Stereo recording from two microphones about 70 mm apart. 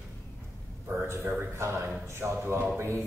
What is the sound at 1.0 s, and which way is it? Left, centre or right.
A man's voice, right.